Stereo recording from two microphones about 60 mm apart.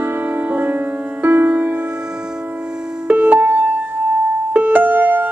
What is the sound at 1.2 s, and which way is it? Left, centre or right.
Music, right.